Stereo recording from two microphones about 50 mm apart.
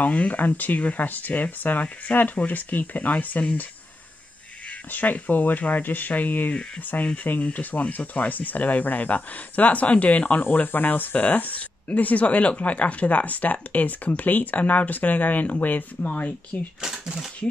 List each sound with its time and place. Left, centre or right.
0.0 s speech: left
4.9 s speech: left
16.8 s speech: centre